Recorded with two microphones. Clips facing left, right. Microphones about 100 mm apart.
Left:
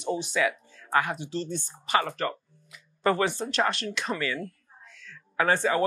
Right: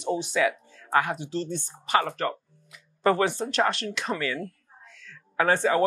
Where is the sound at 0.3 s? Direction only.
60° right (ahead or behind).